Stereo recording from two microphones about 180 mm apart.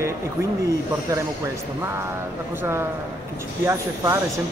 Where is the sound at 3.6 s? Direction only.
15° right (ahead or behind).